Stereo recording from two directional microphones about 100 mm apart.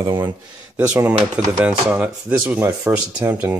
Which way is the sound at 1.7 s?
15° right (ahead or behind).